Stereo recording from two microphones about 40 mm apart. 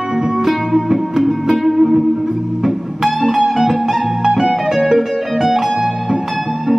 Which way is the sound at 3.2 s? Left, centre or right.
Centre.